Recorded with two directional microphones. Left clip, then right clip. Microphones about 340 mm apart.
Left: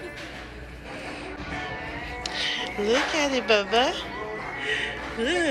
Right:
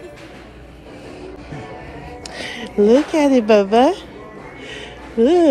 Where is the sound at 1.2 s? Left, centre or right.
Centre.